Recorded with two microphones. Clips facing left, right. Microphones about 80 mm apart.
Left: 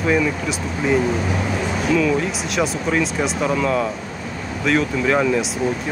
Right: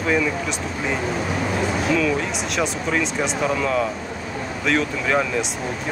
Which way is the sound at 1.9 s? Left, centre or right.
Centre.